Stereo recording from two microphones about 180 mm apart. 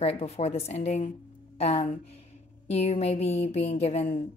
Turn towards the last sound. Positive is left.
turn(degrees=35)  # may be behind; listen again after turning